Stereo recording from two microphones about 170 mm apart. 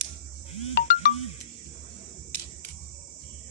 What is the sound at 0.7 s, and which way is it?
Music, 60° left (ahead or behind).